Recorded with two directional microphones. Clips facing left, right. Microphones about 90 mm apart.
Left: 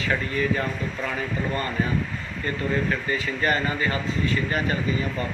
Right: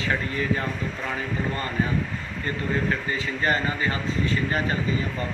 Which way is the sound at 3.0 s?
25° right (ahead or behind).